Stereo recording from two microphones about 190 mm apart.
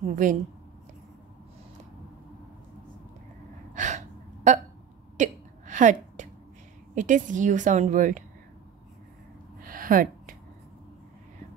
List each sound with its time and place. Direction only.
0.0 s speech: 40° right (ahead or behind)
3.7 s gasp: 40° right (ahead or behind)
4.5 s speech: 40° right (ahead or behind)
5.1 s hiccup: 40° right (ahead or behind)
7.0 s speech: 40° right (ahead or behind)
9.6 s a sound: 45° right (ahead or behind)